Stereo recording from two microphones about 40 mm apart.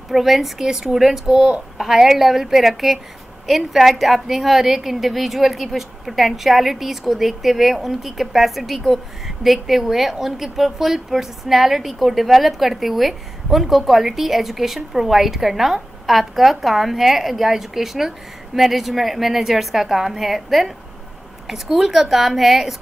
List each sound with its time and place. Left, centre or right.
0.1 s a woman's voice: centre
1.2 s speech: centre
1.8 s a woman's voice: centre